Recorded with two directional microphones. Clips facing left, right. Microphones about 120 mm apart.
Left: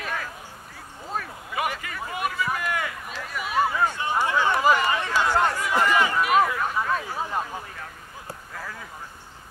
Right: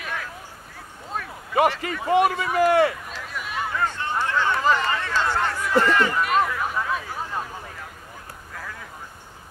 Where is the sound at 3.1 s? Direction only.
Centre (ahead or behind).